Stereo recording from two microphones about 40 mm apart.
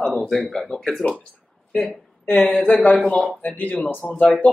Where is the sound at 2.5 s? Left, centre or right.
Centre.